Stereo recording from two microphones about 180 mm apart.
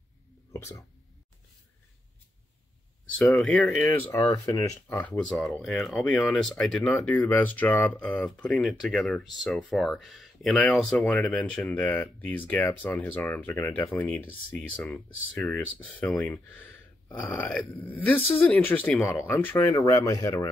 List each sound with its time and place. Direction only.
0.5 s speech: 15° left (ahead or behind)
3.2 s speech: centre (ahead or behind)
3.8 s speech: 15° left (ahead or behind)
5.1 s speech: 5° left (ahead or behind); by 20.4 s 20° left (ahead or behind)